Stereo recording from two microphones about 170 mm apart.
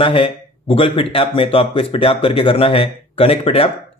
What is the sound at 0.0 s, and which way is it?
A man's voice, 30° left (ahead or behind).